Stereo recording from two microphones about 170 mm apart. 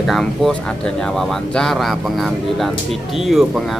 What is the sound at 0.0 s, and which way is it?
Speech, centre (ahead or behind).